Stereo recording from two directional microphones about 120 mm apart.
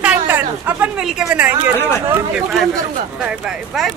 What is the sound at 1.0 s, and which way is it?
Speech, 5° right (ahead or behind).